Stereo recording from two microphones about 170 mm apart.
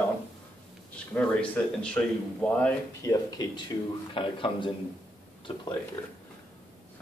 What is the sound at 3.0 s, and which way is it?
A man's voice, 20° left (ahead or behind).